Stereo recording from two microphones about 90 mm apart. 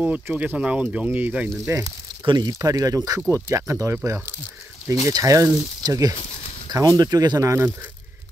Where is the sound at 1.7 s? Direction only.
30° right (ahead or behind).